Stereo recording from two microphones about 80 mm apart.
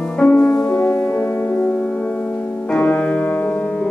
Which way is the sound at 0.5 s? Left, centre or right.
Left.